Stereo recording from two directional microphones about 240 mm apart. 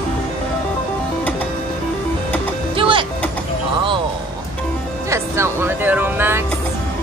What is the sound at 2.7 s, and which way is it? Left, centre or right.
Music, right.